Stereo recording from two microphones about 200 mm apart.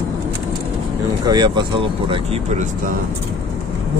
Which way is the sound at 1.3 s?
20° right (ahead or behind).